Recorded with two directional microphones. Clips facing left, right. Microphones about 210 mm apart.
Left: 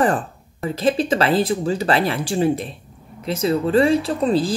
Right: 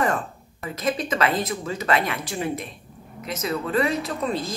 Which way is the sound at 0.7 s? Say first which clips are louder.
Left 7 dB; 30° left (ahead or behind).